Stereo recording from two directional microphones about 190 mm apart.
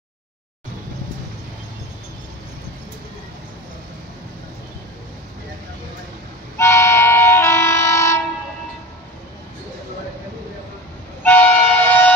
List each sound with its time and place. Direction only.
6.6 s train: 15° left (ahead or behind)
11.2 s train: 10° left (ahead or behind)